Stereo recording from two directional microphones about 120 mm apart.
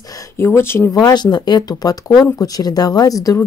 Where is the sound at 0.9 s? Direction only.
35° left (ahead or behind).